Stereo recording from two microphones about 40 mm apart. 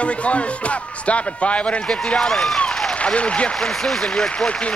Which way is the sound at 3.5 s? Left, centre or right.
Centre.